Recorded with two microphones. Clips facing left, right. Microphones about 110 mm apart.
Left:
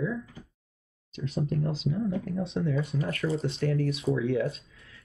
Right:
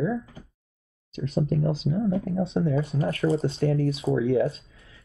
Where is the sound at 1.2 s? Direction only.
35° right (ahead or behind).